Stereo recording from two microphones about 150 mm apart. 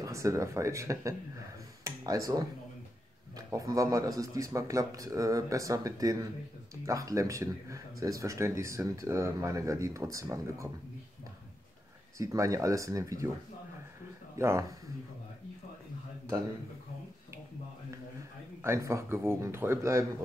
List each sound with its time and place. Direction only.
0.0 s speech: 20° right (ahead or behind)
12.2 s speech: 20° right (ahead or behind)
14.4 s a man's voice: 15° right (ahead or behind)
18.6 s a man's voice: 20° right (ahead or behind)